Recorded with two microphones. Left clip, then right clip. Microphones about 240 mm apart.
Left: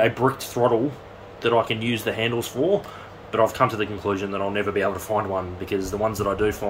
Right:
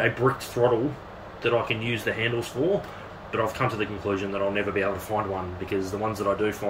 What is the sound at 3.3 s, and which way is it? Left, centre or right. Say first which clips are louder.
Speech: left 6 dB; left.